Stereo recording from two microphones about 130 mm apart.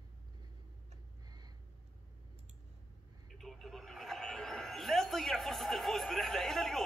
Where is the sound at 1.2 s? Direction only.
30° right (ahead or behind).